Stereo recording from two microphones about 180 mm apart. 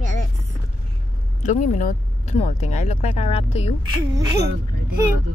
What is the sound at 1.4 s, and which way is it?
Speech, 40° left (ahead or behind).